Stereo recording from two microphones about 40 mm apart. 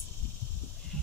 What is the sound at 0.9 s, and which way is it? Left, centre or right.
Heart sounds, centre.